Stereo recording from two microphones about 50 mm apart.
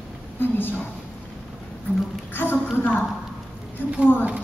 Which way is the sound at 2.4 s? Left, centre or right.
Left.